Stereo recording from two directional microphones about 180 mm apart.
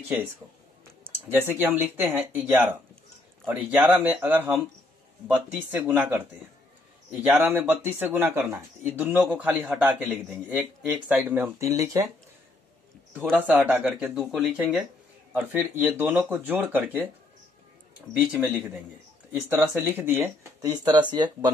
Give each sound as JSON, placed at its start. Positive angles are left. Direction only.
{"t": 1.3, "sound": "speech", "side_deg": -10}
{"t": 13.4, "sound": "speech", "side_deg": -10}
{"t": 18.1, "sound": "speech", "side_deg": -10}